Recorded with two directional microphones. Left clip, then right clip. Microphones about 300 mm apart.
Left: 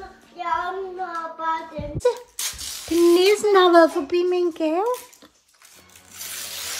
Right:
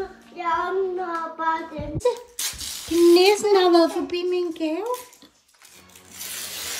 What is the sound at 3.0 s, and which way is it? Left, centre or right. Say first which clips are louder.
Speech: right 1 dB; centre.